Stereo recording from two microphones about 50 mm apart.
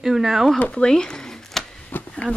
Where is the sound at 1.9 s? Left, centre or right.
Left.